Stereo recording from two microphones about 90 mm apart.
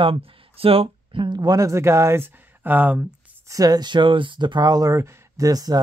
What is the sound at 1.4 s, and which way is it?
Speech, 40° right (ahead or behind).